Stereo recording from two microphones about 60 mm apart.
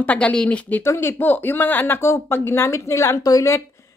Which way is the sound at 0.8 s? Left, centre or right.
Left.